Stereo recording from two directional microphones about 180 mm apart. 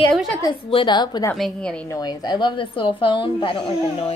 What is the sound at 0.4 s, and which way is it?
Speech, 30° left (ahead or behind).